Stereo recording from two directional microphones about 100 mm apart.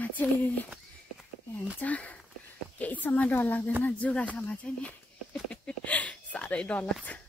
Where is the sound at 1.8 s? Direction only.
15° left (ahead or behind).